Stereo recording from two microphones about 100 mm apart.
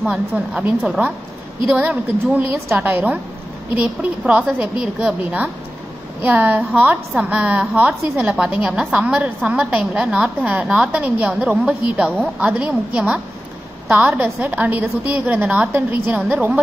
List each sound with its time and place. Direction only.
0.0 s a woman's voice: 10° right (ahead or behind)